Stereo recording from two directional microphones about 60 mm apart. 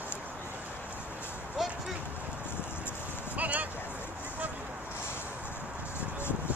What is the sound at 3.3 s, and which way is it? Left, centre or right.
Vehicle, right.